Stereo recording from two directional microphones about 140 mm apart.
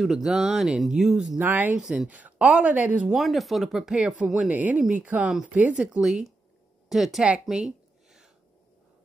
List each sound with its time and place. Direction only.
0.0 s speech: 5° right (ahead or behind)
1.4 s speech: 15° right (ahead or behind)
3.1 s speech: centre (ahead or behind)
6.9 s a sound: centre (ahead or behind)